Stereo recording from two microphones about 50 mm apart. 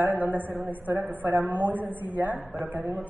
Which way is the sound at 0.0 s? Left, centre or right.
Right.